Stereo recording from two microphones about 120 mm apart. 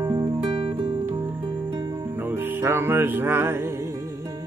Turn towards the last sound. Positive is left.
turn(degrees=-20)  # may be behind; listen again after turning